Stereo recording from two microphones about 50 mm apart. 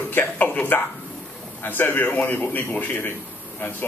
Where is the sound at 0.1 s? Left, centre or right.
Left.